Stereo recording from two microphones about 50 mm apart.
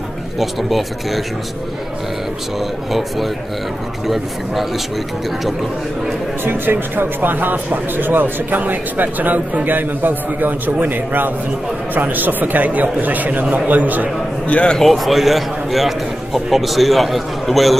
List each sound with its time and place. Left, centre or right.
0.4 s speech: centre
2.6 s speech: centre
6.4 s speech: right
14.5 s a man's voice: left
14.8 s speech: centre